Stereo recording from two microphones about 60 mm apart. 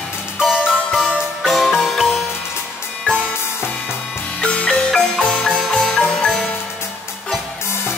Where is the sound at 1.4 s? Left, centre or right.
Centre.